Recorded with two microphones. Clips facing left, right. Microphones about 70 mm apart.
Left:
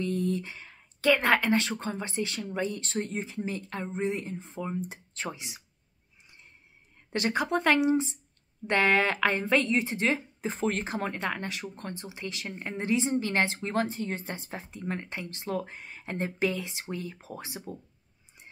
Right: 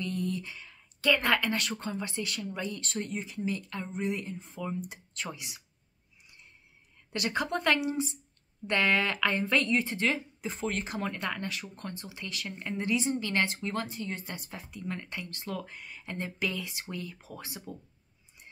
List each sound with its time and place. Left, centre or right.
0.0 s speech: left
7.1 s speech: left